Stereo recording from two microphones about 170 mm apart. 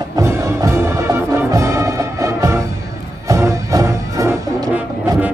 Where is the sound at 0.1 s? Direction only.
15° right (ahead or behind).